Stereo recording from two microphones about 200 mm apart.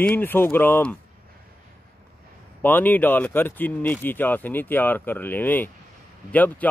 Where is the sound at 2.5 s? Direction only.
10° left (ahead or behind).